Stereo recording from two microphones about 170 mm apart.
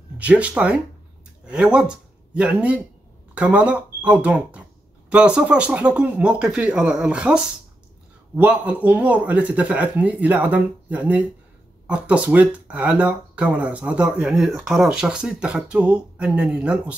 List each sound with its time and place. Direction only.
0.2 s speech: 5° right (ahead or behind)